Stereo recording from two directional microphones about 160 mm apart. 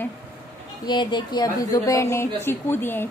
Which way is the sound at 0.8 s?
30° left (ahead or behind).